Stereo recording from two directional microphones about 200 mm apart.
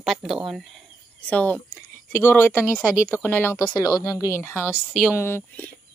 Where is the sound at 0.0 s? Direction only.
Centre (ahead or behind).